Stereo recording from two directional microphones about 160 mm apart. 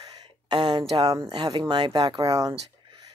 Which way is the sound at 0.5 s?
25° right (ahead or behind).